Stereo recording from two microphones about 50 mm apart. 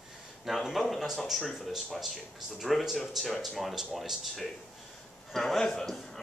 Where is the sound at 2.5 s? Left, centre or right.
Centre.